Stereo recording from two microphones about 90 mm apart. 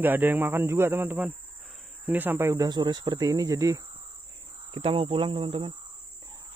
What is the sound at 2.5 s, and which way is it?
Speech, 45° right (ahead or behind).